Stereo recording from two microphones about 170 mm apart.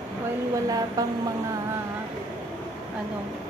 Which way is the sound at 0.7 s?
20° right (ahead or behind).